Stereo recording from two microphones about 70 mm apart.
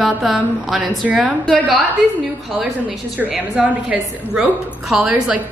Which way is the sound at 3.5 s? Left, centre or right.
Centre.